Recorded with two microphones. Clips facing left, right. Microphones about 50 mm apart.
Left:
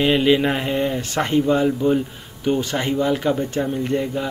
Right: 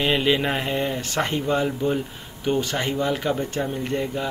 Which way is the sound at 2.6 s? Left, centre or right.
Centre.